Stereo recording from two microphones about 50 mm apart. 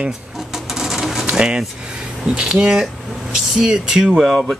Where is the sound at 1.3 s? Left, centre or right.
Centre.